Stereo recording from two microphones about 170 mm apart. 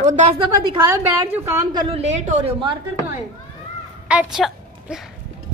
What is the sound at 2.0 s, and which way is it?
Speech, 45° right (ahead or behind).